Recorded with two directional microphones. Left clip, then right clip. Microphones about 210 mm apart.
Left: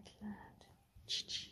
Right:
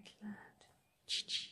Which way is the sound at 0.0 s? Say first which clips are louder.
Even; 10° right (ahead or behind).